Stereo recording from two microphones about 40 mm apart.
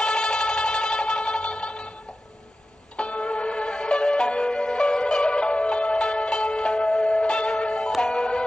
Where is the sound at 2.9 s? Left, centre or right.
Left.